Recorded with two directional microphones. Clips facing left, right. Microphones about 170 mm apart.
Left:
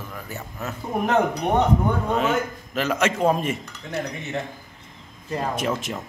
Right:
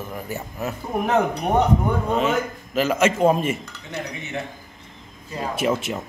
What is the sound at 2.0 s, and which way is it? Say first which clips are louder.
A man's voice: right 1 dB; centre (ahead or behind).